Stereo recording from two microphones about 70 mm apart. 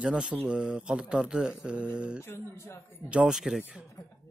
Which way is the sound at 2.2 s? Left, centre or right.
Left.